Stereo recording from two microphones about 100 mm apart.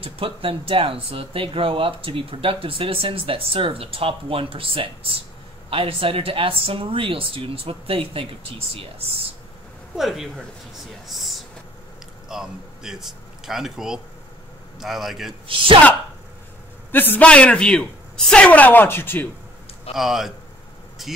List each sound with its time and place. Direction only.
0.0 s speech: 65° right (ahead or behind)
9.9 s a man's voice: 5° right (ahead or behind)
15.4 s speech: 60° right (ahead or behind)
16.9 s a woman's voice: 20° left (ahead or behind)
19.9 s a man's voice: 5° right (ahead or behind)